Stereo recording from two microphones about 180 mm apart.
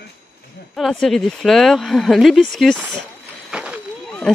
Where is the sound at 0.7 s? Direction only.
Centre (ahead or behind).